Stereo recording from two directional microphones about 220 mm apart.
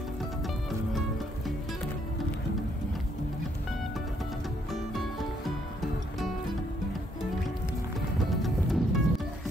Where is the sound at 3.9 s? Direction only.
Centre (ahead or behind).